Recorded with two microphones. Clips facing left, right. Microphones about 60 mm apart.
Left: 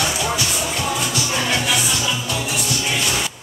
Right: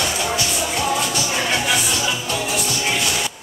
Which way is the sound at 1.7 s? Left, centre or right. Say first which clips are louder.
Even; right.